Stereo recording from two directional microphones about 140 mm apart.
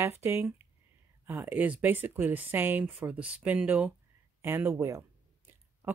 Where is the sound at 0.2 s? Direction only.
15° right (ahead or behind).